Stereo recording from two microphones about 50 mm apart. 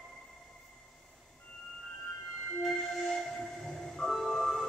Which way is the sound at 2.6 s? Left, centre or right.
Centre.